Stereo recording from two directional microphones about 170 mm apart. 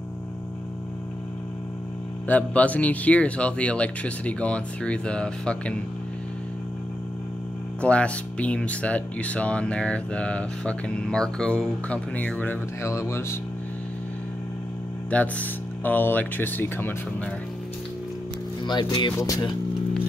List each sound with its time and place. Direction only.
2.2 s speech: 10° left (ahead or behind)
7.8 s speech: 5° left (ahead or behind)
15.0 s speech: 10° left (ahead or behind)
18.7 s speech: 25° left (ahead or behind)